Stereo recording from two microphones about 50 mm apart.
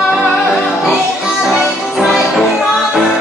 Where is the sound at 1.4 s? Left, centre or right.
Centre.